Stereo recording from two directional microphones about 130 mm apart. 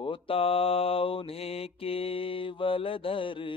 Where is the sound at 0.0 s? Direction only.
45° left (ahead or behind).